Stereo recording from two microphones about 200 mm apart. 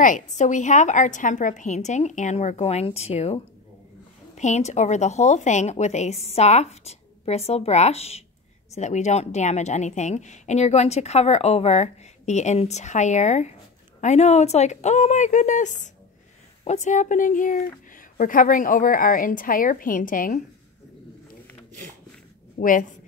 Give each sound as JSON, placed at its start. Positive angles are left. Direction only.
{"t": 0.0, "sound": "a woman's voice", "side_deg": 40}
{"t": 4.4, "sound": "a woman's voice", "side_deg": 35}
{"t": 22.6, "sound": "a woman's voice", "side_deg": 40}